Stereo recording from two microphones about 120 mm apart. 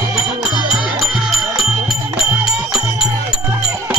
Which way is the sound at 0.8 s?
5° right (ahead or behind).